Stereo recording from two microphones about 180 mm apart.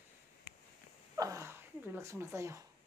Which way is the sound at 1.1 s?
15° right (ahead or behind).